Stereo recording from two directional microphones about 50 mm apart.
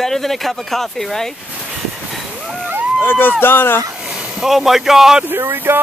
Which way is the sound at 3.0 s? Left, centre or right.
Left.